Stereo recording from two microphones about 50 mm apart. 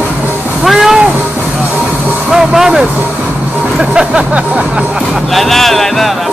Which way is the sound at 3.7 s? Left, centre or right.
Centre.